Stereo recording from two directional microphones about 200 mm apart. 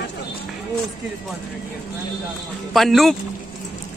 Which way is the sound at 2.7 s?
Centre (ahead or behind).